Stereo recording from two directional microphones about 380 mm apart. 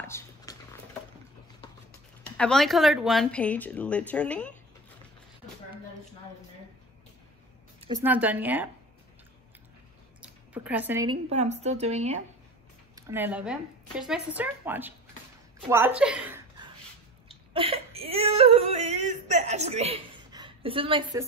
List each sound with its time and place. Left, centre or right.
0.0 s dog: centre
2.3 s speech: centre
7.8 s speech: centre
10.2 s a woman's voice: centre
12.9 s a woman's voice: centre
17.3 s yodeling: centre